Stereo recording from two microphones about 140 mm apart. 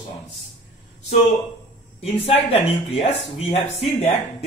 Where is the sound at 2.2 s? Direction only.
45° left (ahead or behind).